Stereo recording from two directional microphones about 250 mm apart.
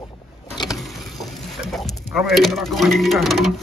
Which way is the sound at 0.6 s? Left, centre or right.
Centre.